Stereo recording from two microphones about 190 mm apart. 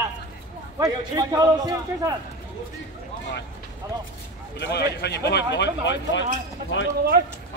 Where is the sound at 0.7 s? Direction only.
20° right (ahead or behind).